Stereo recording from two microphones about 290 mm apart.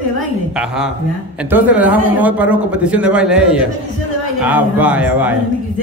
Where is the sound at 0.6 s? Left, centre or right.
Centre.